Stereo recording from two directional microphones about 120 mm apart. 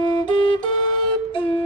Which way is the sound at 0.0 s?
40° left (ahead or behind).